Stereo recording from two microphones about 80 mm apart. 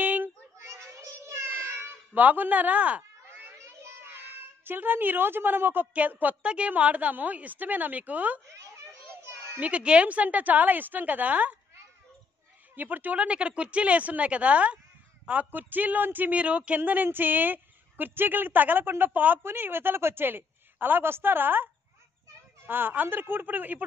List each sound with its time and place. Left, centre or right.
0.0 s a sound: right
0.6 s a sound: right
2.1 s speech: right
3.3 s children playing: right
4.6 s speech: right
8.5 s children playing: right
9.6 s speech: centre
12.7 s speech: right
22.7 s speech: right